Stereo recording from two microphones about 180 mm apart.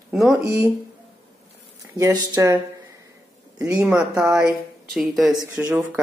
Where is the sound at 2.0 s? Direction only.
20° right (ahead or behind).